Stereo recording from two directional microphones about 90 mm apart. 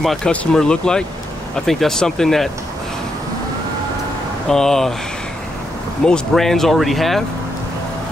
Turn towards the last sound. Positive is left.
turn(degrees=0)  # may be behind; listen again after turning